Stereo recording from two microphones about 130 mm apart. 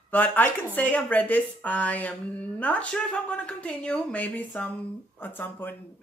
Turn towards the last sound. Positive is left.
turn(degrees=15)  # may be behind; listen again after turning